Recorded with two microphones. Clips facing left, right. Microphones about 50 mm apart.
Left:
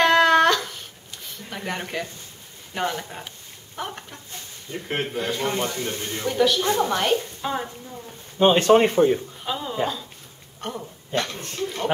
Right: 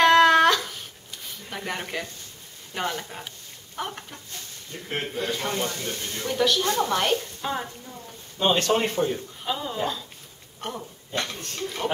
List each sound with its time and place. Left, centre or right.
0.0 s a sound: centre
1.5 s a woman's voice: centre
6.2 s a woman's voice: centre
8.4 s a man's voice: centre
9.4 s a woman's voice: centre
11.3 s speech: centre